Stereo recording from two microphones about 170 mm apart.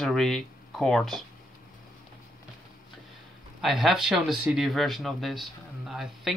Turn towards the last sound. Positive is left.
turn(degrees=0)  # may be behind; listen again after turning